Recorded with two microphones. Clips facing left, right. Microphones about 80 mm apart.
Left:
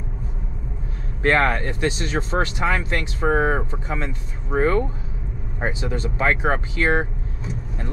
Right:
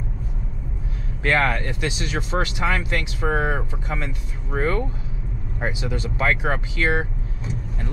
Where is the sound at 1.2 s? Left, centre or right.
Left.